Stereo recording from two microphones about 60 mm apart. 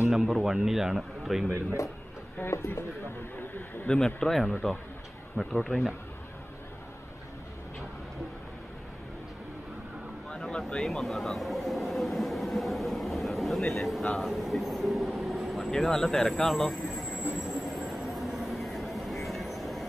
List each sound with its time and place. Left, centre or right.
0.1 s speech: centre
2.5 s speech: left
3.8 s speech: centre
10.4 s vehicle: centre